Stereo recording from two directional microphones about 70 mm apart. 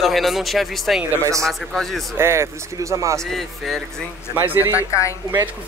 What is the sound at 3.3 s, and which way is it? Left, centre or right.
Speech, centre.